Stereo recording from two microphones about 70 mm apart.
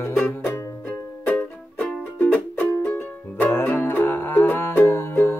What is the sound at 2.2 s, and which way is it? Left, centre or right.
Music, left.